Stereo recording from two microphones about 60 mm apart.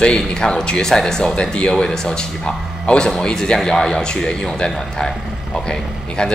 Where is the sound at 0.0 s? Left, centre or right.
Centre.